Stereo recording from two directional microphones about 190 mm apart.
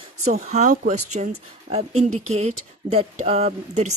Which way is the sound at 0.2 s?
35° right (ahead or behind).